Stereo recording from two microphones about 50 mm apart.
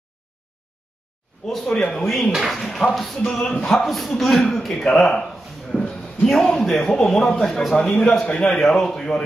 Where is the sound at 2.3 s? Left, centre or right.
Centre.